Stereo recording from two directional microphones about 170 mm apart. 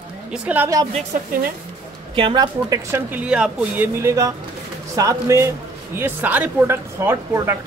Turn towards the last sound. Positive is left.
turn(degrees=-15)  # may be behind; listen again after turning